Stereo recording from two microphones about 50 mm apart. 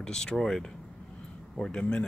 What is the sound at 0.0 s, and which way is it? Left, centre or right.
Speech, centre.